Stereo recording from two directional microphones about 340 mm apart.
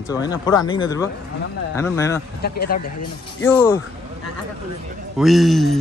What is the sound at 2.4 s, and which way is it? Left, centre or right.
Speech, left.